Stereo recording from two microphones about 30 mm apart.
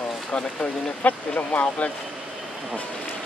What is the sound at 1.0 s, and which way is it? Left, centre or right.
Speech, left.